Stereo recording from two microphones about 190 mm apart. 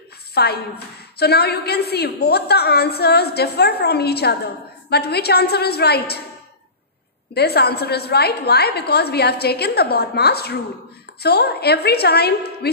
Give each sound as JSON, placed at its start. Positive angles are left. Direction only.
{"t": 0.3, "sound": "a woman's voice", "side_deg": 55}
{"t": 7.3, "sound": "a woman's voice", "side_deg": 55}